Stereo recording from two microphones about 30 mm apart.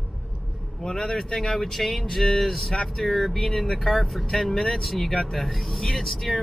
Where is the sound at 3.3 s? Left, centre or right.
Centre.